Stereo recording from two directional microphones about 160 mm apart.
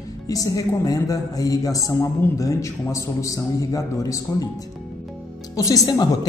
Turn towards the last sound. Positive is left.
turn(degrees=25)  # may be behind; listen again after turning